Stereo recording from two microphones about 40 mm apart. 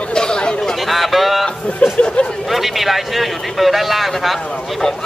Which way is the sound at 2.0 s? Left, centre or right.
Left.